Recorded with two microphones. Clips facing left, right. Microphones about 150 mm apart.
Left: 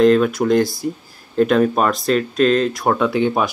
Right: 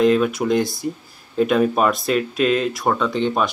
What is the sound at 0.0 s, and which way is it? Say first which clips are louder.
Speech: left 3 dB; 5° right (ahead or behind).